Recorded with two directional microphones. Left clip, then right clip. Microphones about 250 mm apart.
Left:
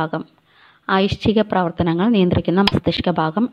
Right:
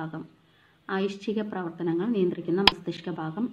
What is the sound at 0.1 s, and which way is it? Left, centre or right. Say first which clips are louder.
A woman's voice: left 14 dB; left.